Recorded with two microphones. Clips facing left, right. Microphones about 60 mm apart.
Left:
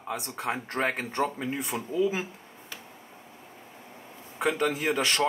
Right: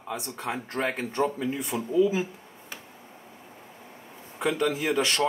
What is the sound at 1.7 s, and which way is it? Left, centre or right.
Speech, centre.